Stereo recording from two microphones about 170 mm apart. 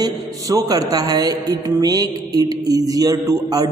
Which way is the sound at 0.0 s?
20° right (ahead or behind).